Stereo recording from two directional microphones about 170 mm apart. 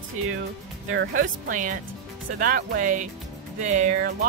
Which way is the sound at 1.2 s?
50° right (ahead or behind).